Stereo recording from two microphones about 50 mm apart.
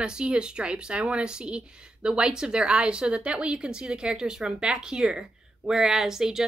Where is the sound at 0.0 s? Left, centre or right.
Centre.